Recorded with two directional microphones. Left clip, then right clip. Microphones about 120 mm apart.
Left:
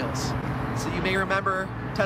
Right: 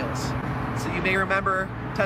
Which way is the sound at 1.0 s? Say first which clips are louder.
Right 2 dB; 5° left (ahead or behind).